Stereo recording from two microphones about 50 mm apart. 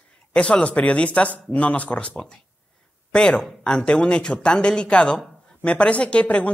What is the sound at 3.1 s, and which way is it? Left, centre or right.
A man's voice, centre.